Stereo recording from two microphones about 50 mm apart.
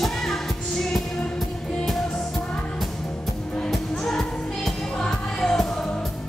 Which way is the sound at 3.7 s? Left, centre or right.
Centre.